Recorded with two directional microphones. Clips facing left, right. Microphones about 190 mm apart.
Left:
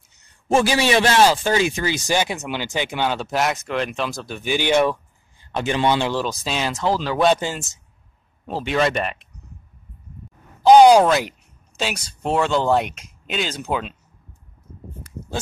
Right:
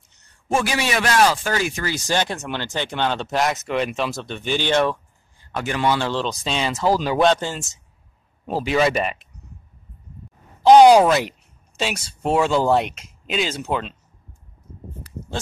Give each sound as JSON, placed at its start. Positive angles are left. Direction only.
{"t": 0.5, "sound": "a man's voice", "side_deg": 30}
{"t": 2.0, "sound": "speech", "side_deg": 10}
{"t": 5.5, "sound": "speech", "side_deg": 25}
{"t": 7.2, "sound": "speech", "side_deg": 10}
{"t": 8.6, "sound": "speech", "side_deg": -5}
{"t": 10.6, "sound": "speech", "side_deg": 0}